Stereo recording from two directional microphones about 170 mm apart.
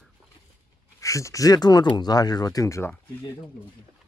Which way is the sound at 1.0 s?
20° left (ahead or behind).